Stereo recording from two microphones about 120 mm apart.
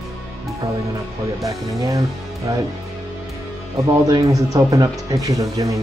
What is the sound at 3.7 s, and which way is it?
Speech, 25° right (ahead or behind).